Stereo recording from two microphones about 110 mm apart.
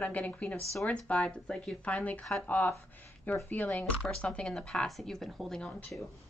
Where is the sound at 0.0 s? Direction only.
15° left (ahead or behind).